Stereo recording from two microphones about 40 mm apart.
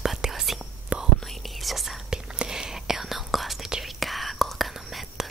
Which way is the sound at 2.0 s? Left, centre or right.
Centre.